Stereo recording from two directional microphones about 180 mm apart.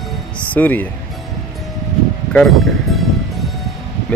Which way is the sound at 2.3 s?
Centre (ahead or behind).